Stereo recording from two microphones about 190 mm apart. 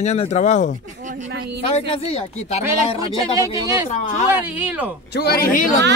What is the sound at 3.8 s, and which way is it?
Speech, 40° left (ahead or behind).